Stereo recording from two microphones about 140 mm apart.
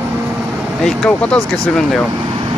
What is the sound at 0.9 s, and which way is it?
Speech, 5° left (ahead or behind).